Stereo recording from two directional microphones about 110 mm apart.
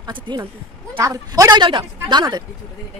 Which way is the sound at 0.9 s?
30° right (ahead or behind).